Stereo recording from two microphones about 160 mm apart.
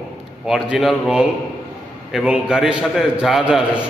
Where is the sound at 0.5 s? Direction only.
Centre (ahead or behind).